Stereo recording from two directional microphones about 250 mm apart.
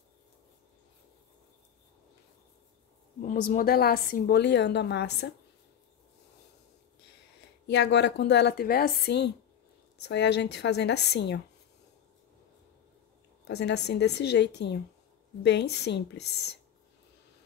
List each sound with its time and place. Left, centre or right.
3.4 s a woman's voice: left
7.6 s a woman's voice: left
13.5 s a woman's voice: left